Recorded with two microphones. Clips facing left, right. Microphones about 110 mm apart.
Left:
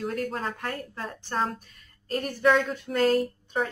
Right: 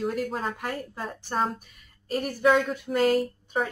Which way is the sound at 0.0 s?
5° right (ahead or behind).